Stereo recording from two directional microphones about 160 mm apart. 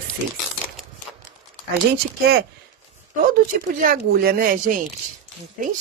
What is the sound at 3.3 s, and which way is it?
A woman's voice, 65° right (ahead or behind).